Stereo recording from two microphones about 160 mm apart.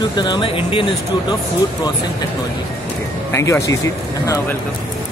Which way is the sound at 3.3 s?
15° left (ahead or behind).